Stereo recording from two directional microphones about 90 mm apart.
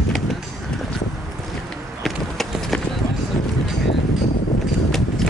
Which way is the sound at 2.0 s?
5° left (ahead or behind).